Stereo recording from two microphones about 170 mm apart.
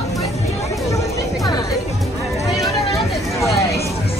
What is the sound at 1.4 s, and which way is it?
Music, 25° left (ahead or behind).